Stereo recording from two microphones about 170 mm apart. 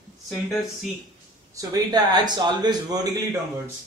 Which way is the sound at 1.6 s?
25° right (ahead or behind).